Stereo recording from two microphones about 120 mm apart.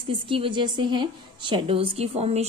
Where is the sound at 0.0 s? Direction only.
45° right (ahead or behind).